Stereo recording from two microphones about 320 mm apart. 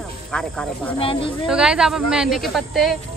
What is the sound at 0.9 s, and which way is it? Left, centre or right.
Speech, centre.